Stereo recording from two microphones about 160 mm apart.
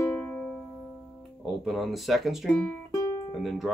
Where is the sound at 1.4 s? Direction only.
Centre (ahead or behind); by 3.3 s 20° left (ahead or behind).